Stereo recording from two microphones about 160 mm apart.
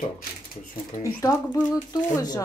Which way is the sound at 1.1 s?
25° left (ahead or behind).